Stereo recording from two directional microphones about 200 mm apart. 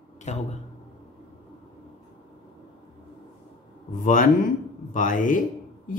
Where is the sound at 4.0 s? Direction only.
45° left (ahead or behind).